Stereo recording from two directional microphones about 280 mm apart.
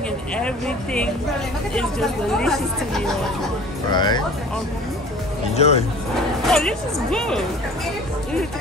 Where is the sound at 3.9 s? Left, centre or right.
Centre.